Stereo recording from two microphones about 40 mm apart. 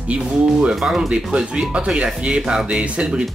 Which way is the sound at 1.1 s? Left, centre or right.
Right.